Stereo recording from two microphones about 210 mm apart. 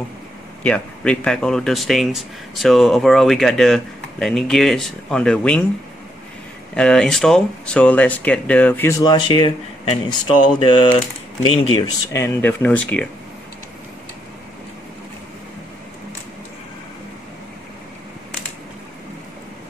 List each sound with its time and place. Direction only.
0.7 s speech: 5° left (ahead or behind)
6.7 s speech: 5° left (ahead or behind)
9.0 s speech: 20° left (ahead or behind)